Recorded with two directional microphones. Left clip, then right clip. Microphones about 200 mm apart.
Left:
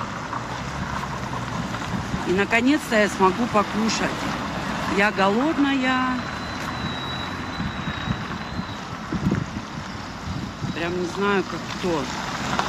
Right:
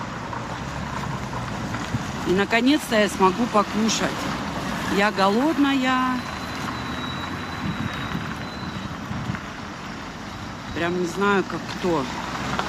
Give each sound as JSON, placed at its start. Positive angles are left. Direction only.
{"t": 2.3, "sound": "speech", "side_deg": -10}
{"t": 10.8, "sound": "speech", "side_deg": -10}